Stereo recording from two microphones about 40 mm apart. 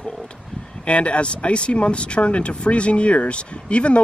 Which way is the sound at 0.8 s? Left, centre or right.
Left.